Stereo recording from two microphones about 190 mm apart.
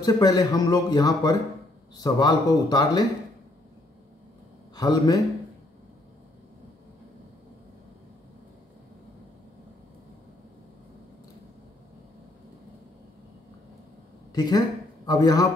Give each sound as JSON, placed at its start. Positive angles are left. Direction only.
{"t": 0.0, "sound": "a man's voice", "side_deg": 20}
{"t": 4.7, "sound": "a man's voice", "side_deg": 20}
{"t": 14.3, "sound": "a man's voice", "side_deg": 20}